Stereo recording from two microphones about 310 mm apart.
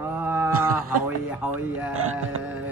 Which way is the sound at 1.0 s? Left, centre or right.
Centre.